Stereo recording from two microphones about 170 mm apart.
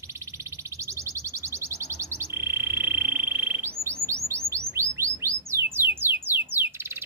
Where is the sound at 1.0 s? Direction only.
15° right (ahead or behind).